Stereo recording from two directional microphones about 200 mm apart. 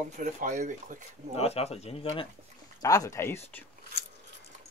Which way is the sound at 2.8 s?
15° left (ahead or behind).